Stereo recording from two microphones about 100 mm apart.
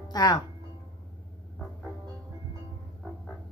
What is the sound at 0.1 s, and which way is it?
Speech, 45° left (ahead or behind).